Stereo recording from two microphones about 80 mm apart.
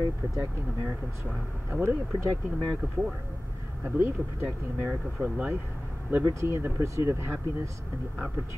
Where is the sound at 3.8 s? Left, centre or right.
Right.